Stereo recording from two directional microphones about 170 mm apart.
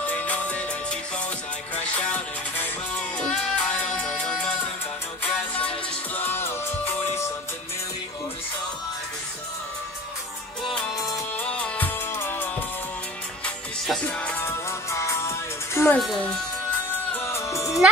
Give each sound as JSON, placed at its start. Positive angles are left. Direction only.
{"t": 0.0, "sound": "music", "side_deg": 10}
{"t": 2.0, "sound": "music", "side_deg": 10}
{"t": 11.1, "sound": "music", "side_deg": 20}
{"t": 11.4, "sound": "music", "side_deg": 5}
{"t": 13.8, "sound": "music", "side_deg": 5}
{"t": 16.0, "sound": "speech", "side_deg": 0}
{"t": 17.3, "sound": "music", "side_deg": 15}